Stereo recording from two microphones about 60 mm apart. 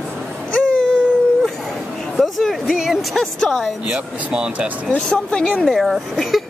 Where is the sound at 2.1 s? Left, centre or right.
Centre.